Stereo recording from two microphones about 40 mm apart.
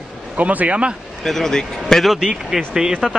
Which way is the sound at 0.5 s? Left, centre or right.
Right.